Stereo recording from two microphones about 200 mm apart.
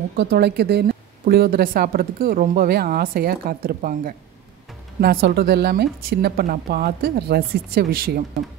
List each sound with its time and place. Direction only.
0.1 s speech: 50° right (ahead or behind)